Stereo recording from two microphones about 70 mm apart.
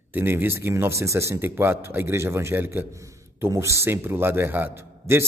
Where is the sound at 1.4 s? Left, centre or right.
Right.